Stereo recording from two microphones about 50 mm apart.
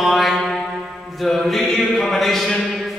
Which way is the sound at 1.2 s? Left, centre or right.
Centre.